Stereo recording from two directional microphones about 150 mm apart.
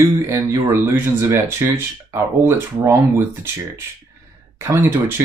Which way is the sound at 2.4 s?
15° right (ahead or behind).